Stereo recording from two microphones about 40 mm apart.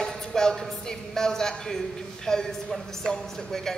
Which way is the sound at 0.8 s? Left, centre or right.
Centre.